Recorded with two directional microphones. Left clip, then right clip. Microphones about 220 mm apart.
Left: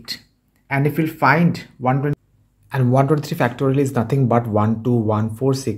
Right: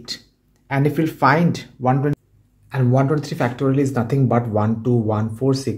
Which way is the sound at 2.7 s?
20° left (ahead or behind).